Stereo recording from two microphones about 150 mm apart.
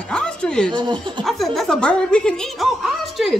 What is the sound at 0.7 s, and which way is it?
Speech, 30° right (ahead or behind).